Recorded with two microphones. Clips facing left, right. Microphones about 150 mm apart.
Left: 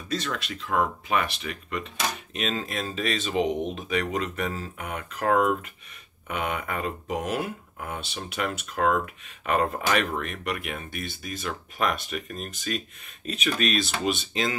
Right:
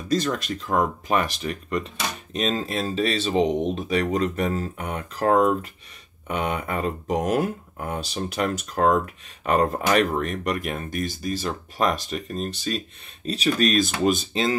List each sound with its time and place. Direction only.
0.1 s speech: 40° right (ahead or behind)